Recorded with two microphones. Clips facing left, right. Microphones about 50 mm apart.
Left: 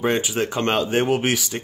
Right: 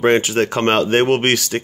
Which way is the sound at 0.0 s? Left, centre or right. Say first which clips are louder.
Right 6 dB; right.